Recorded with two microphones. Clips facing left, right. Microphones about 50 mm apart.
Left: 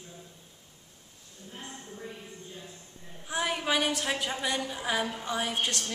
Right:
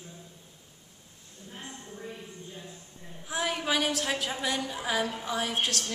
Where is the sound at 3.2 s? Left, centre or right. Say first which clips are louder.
Even; centre.